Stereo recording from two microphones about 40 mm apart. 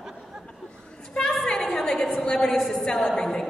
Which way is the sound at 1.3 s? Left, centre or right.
Centre.